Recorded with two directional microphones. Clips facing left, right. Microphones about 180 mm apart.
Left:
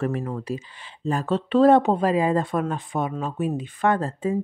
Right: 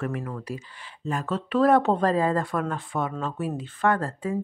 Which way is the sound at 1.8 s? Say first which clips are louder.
Left 1 dB; 10° left (ahead or behind).